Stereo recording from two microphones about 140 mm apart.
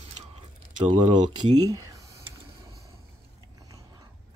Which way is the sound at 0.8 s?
55° right (ahead or behind).